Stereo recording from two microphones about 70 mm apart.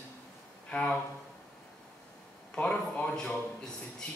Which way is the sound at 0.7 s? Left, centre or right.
Centre.